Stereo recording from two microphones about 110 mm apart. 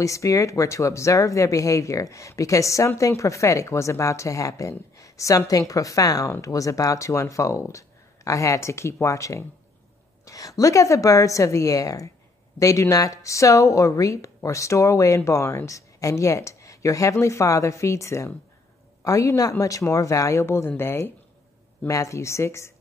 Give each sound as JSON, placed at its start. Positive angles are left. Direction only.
{"t": 0.0, "sound": "speech", "side_deg": 30}